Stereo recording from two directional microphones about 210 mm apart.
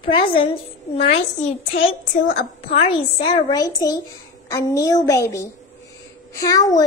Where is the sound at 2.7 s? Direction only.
25° left (ahead or behind).